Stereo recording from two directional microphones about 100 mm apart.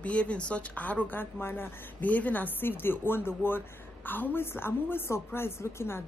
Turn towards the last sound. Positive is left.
turn(degrees=25)  # may be behind; listen again after turning